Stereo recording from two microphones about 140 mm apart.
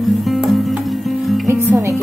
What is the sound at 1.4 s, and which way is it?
Music, 20° right (ahead or behind).